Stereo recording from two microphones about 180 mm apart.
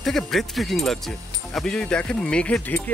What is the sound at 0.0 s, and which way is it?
Speech, centre (ahead or behind).